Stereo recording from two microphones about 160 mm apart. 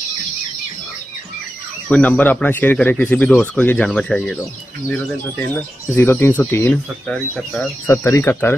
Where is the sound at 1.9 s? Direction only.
10° left (ahead or behind).